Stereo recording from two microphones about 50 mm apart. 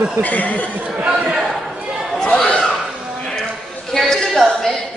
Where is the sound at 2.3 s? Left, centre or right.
Centre.